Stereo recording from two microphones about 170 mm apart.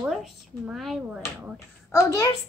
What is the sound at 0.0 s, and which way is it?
Speech, 5° right (ahead or behind).